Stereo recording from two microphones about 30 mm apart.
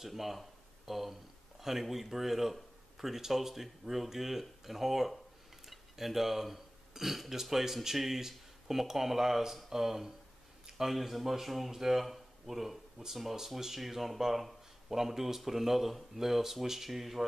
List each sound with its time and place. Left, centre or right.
0.0 s speech: centre